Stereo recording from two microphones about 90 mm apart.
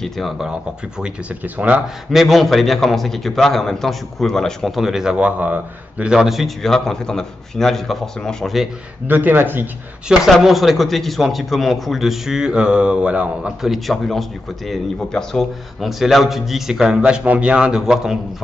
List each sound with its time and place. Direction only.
0.0 s a man's voice: centre (ahead or behind)
1.0 s speech: 15° right (ahead or behind)
2.0 s a man's voice: centre (ahead or behind)
9.0 s speech: 20° right (ahead or behind)
10.0 s a man's voice: 5° right (ahead or behind)